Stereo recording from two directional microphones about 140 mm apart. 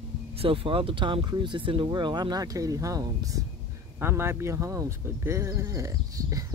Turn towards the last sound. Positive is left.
turn(degrees=-25)  # may be behind; listen again after turning